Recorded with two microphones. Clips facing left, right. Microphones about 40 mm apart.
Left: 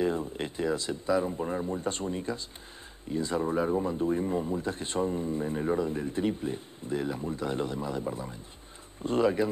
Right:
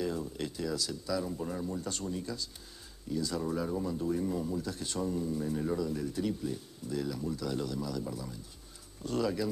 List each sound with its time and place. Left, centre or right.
0.0 s speech: left